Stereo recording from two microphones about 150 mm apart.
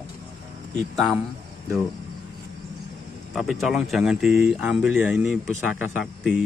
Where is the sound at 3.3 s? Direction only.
Centre (ahead or behind).